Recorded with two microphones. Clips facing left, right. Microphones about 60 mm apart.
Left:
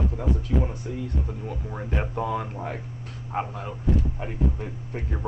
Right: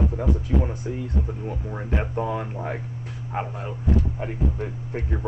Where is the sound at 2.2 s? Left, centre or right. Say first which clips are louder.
Even; right.